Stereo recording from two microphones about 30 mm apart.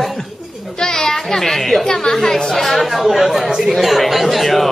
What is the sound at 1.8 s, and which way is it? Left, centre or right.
Speech, left.